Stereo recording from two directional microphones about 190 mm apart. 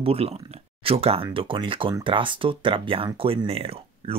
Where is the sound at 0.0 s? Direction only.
30° right (ahead or behind).